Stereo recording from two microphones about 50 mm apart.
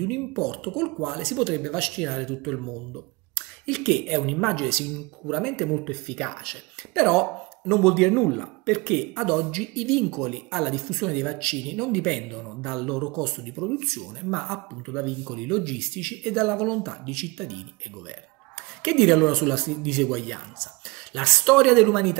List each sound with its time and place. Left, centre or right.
0.0 s speech: centre
18.8 s speech: centre